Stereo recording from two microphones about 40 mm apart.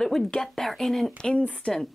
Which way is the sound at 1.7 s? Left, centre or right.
Left.